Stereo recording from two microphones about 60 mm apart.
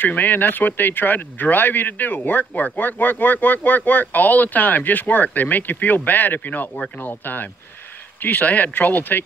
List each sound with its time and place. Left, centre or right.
0.0 s speech: left